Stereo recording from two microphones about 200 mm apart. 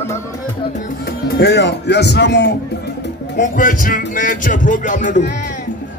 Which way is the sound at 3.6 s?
45° left (ahead or behind).